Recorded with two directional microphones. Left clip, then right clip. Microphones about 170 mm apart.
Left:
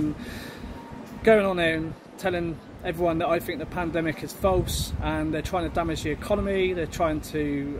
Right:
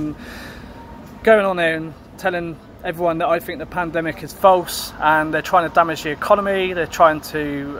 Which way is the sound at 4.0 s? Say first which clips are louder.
Right 4 dB; 50° right (ahead or behind).